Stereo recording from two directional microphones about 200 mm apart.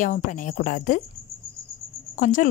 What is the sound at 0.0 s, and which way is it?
Speech, 40° left (ahead or behind).